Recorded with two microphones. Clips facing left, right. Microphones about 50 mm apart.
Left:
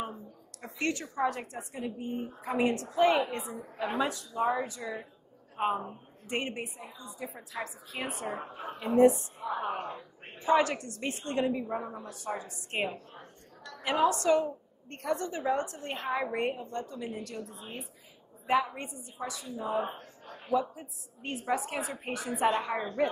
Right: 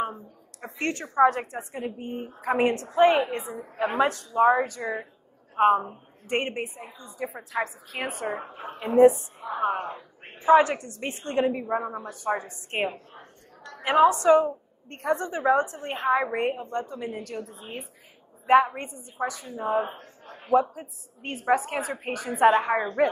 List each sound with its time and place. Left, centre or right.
0.0 s a sound: right
1.5 s a woman's voice: right
8.4 s a woman's voice: right
9.4 s a woman's voice: centre; by 19.9 s right
21.5 s a woman's voice: right